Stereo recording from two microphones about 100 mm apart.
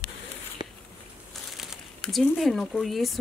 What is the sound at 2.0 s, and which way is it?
A woman's voice, centre (ahead or behind).